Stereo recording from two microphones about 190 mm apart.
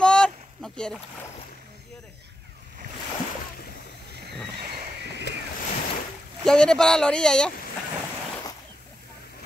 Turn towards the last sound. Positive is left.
turn(degrees=5)  # may be behind; listen again after turning